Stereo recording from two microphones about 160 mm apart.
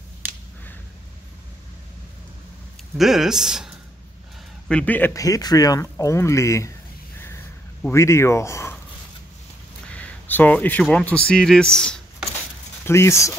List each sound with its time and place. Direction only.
0.2 s finger snapping: 10° right (ahead or behind)
3.0 s speech: centre (ahead or behind)
4.6 s speech: 10° left (ahead or behind)
7.9 s speech: 15° left (ahead or behind)
9.9 s speech: 10° left (ahead or behind)
12.8 s speech: 15° left (ahead or behind)